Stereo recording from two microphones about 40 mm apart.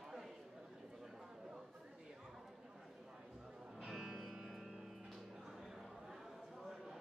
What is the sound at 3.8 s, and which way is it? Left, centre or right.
Music, centre.